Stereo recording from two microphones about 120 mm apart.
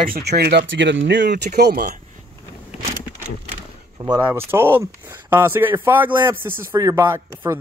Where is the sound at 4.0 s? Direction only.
40° right (ahead or behind).